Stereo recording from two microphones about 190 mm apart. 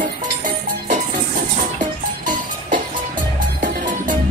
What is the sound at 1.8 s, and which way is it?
Music, 45° right (ahead or behind).